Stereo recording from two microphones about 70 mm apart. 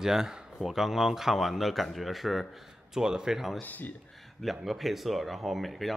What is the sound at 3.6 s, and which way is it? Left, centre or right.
Speech, left.